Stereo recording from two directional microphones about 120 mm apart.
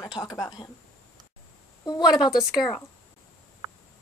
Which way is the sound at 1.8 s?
35° left (ahead or behind).